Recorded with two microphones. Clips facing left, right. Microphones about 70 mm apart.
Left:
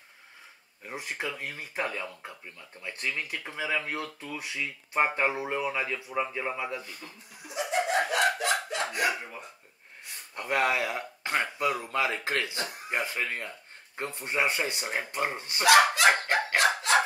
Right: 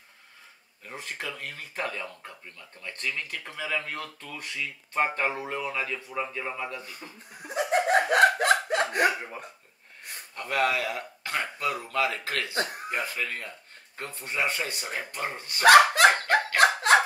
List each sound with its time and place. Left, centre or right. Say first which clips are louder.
0.8 s speech: left 2 dB; centre
6.8 s speech: right 1 dB; centre
7.4 s laughter: right 4 dB; right
8.1 s a sound: right 6 dB; right
8.9 s speech: right 3 dB; right
10.3 s speech: even; left
15.6 s speech: right 4 dB; right
16.5 s a sound: right 4 dB; right